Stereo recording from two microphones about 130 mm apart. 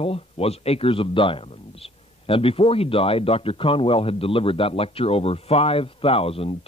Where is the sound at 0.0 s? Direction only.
50° left (ahead or behind).